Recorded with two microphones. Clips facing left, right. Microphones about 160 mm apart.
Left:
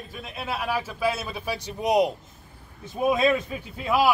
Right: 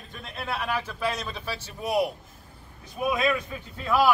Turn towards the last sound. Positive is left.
turn(degrees=10)  # may be behind; listen again after turning